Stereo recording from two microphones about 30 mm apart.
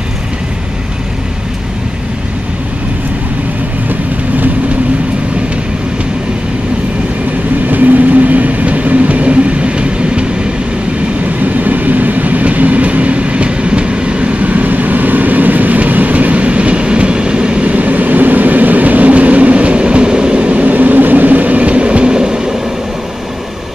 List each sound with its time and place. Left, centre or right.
7.6 s train: right
11.4 s train: right
14.4 s train: right
16.4 s train: right
17.6 s train: right
20.4 s train: right
20.7 s train: right
22.1 s train: right